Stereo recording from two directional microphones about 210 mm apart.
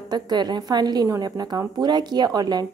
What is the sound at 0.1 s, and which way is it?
A woman's voice, 20° right (ahead or behind).